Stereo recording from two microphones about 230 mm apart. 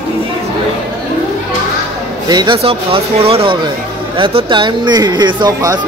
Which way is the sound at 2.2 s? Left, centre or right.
Centre.